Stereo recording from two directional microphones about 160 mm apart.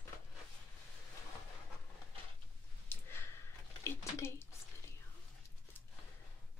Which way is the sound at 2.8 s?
15° left (ahead or behind).